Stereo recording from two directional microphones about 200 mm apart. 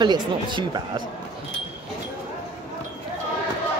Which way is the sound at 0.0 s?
20° right (ahead or behind).